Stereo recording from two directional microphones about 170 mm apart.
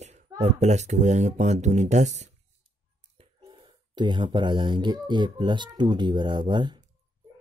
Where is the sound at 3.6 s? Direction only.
25° right (ahead or behind).